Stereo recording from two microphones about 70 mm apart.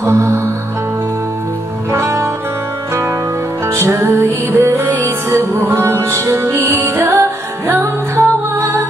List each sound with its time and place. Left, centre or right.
0.0 s music: right
1.9 s music: right